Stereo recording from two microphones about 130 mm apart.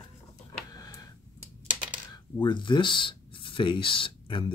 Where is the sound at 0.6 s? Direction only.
30° left (ahead or behind).